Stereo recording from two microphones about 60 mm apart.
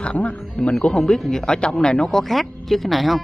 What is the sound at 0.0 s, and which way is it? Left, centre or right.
Speech, centre.